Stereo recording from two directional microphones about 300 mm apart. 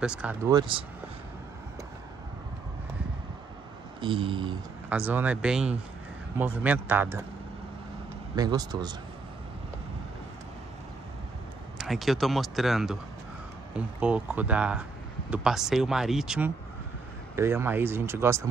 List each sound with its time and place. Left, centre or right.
0.0 s speech: centre
4.0 s speech: centre
4.8 s speech: centre
8.4 s speech: centre
11.8 s speech: centre